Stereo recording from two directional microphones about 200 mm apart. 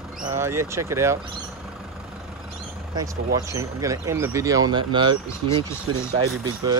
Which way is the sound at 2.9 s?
15° right (ahead or behind).